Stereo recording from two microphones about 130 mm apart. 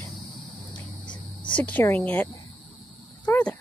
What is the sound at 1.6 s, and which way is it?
Speech, 15° left (ahead or behind).